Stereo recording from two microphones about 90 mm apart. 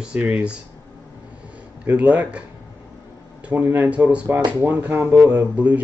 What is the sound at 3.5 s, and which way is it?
Speech, 20° right (ahead or behind).